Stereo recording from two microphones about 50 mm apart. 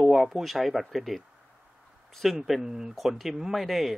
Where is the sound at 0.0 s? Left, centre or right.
Centre.